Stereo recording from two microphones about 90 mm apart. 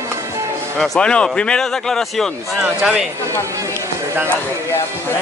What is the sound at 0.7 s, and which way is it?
Speech, 10° left (ahead or behind).